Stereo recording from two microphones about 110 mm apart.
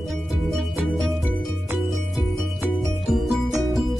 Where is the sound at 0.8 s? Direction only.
Centre (ahead or behind).